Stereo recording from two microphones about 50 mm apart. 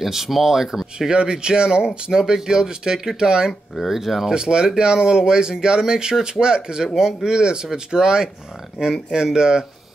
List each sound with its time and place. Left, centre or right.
0.0 s speech: centre
4.3 s speech: centre